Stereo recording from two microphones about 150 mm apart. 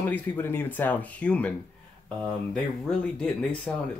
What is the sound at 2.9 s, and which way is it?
Speech, 5° left (ahead or behind).